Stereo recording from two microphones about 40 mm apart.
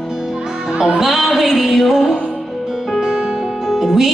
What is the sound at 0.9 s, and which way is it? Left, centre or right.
Music, centre.